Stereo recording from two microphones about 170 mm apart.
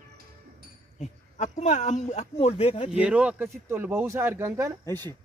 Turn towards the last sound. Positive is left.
turn(degrees=10)  # may be behind; listen again after turning